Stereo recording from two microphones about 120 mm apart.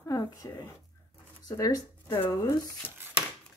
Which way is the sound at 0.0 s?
30° left (ahead or behind).